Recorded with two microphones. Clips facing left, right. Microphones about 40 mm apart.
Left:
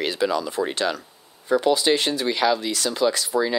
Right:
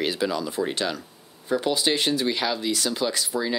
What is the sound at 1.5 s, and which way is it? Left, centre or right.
Speech, left.